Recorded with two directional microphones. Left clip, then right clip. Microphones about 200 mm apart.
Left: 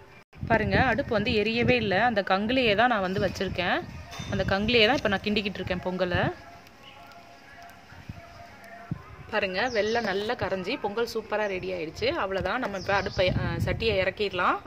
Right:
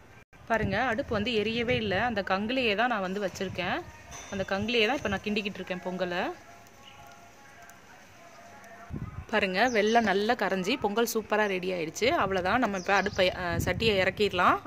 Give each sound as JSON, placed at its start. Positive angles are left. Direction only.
{"t": 0.5, "sound": "speech", "side_deg": 10}
{"t": 9.3, "sound": "a woman's voice", "side_deg": -40}